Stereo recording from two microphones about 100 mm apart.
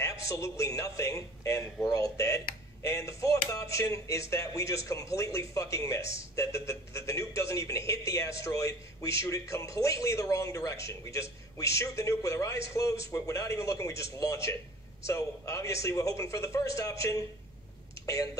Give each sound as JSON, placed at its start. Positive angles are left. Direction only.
{"t": 0.0, "sound": "speech", "side_deg": 30}